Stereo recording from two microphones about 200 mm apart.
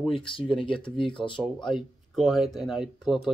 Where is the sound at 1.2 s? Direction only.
Centre (ahead or behind).